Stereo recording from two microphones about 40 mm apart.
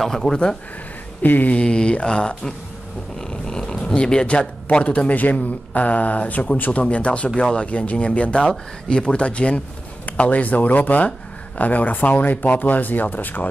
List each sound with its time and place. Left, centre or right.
0.0 s speech: centre
0.3 s speech: centre
1.2 s speech: left
1.5 s speech: left
4.8 s speech: left